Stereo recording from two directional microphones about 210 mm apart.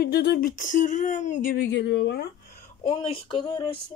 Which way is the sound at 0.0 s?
50° left (ahead or behind).